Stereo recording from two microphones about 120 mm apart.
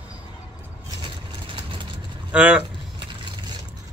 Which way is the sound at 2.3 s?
10° right (ahead or behind).